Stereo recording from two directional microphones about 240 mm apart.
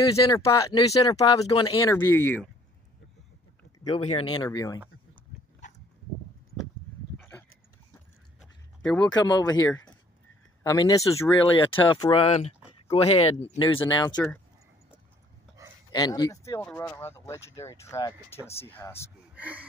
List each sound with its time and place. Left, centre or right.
0.0 s speech: centre
3.8 s speech: left
7.2 s a sound: centre
9.1 s speech: centre
14.1 s speech: centre
15.9 s speech: centre
19.3 s gasp: centre